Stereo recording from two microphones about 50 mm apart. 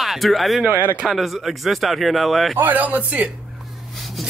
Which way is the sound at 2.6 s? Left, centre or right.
Right.